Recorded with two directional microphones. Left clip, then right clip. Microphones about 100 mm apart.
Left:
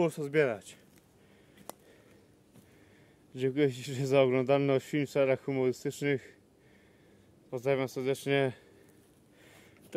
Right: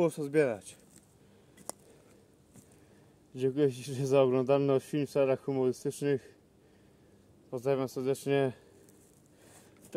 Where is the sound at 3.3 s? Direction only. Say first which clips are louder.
Even; 20° left (ahead or behind).